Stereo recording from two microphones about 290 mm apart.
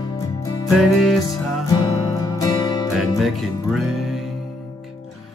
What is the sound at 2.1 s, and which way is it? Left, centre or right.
Music, centre.